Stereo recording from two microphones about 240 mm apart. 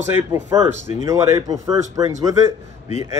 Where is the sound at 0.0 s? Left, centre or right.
Centre.